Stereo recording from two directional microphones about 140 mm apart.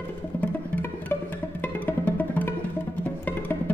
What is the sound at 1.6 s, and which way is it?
Music, 15° left (ahead or behind).